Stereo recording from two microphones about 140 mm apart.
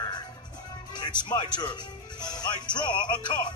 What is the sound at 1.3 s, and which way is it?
Speech, 30° left (ahead or behind).